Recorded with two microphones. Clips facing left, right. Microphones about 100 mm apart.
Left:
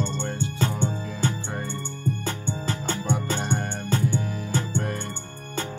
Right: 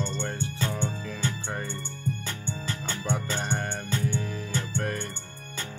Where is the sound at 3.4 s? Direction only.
20° left (ahead or behind).